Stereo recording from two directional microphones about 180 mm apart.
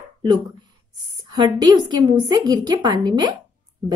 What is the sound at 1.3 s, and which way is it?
Speech, 25° right (ahead or behind).